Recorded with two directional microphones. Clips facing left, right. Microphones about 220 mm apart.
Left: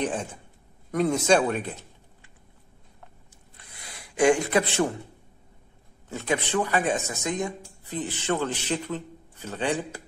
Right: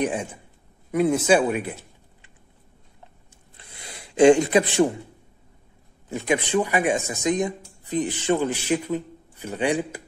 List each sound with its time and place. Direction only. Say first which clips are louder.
0.0 s speech: right 3 dB; 10° right (ahead or behind)
4.2 s speech: right 6 dB; 20° right (ahead or behind)
6.0 s speech: right 4 dB; 15° right (ahead or behind)